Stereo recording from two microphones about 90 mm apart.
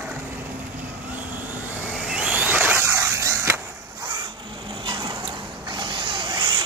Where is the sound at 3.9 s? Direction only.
50° right (ahead or behind).